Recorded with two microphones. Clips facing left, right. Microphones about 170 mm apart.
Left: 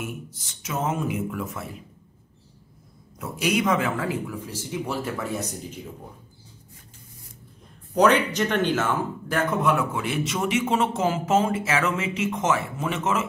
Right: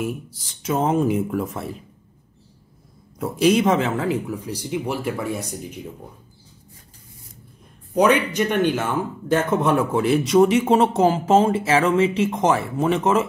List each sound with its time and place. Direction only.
0.0 s a man's voice: 30° right (ahead or behind)
3.2 s speech: 30° right (ahead or behind); by 5.8 s 10° right (ahead or behind)
7.9 s speech: 10° right (ahead or behind)
9.3 s a man's voice: 30° right (ahead or behind)